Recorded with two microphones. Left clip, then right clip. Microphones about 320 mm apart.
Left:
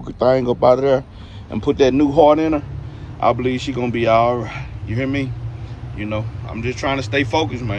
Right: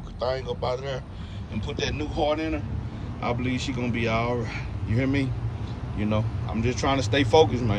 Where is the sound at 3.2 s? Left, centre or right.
Centre.